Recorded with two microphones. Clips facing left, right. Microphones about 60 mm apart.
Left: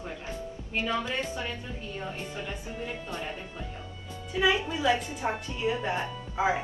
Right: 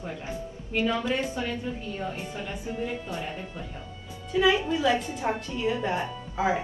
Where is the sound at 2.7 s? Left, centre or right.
Centre.